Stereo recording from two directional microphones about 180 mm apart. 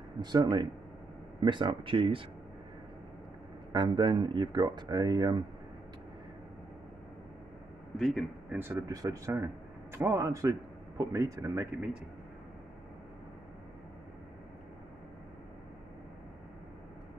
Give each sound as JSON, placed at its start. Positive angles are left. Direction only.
{"t": 0.2, "sound": "speech", "side_deg": -25}
{"t": 3.7, "sound": "speech", "side_deg": -25}
{"t": 8.0, "sound": "a man's voice", "side_deg": 0}
{"t": 8.5, "sound": "speech", "side_deg": -15}